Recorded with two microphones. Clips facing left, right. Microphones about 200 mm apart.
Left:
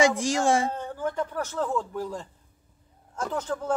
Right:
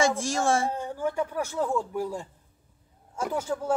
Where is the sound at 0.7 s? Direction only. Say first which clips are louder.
Right 1 dB; 10° right (ahead or behind).